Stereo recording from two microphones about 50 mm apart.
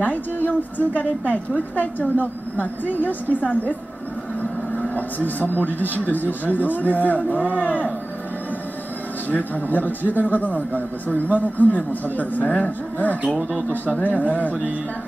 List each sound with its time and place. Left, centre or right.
0.0 s a man's voice: left
9.3 s a man's voice: left